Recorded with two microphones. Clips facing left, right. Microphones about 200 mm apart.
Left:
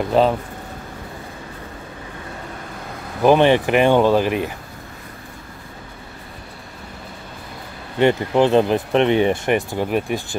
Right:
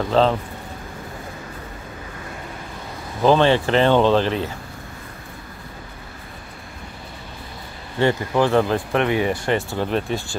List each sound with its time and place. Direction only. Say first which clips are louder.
0.1 s speech: left 1 dB; 10° left (ahead or behind)
3.2 s speech: left 2 dB; 15° left (ahead or behind)
8.0 s speech: left 3 dB; 20° left (ahead or behind)